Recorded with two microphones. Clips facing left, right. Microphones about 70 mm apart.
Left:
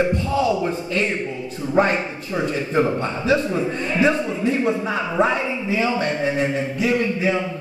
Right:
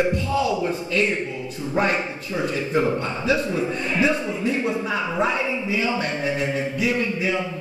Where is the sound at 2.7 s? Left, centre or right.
Left.